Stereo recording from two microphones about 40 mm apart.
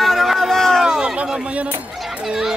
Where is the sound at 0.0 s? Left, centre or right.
Centre.